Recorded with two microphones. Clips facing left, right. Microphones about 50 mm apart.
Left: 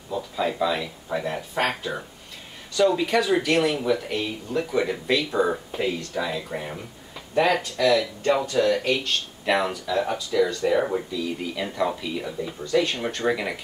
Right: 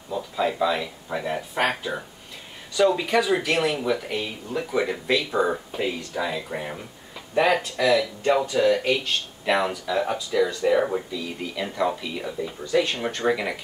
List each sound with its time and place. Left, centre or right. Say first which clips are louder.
0.1 s speech: right 1 dB; centre